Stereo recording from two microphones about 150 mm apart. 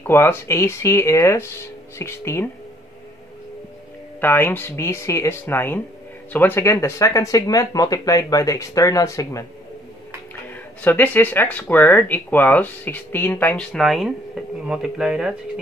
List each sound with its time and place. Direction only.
0.0 s speech: 15° left (ahead or behind)
4.2 s speech: 15° left (ahead or behind)
10.5 s speech: 10° left (ahead or behind)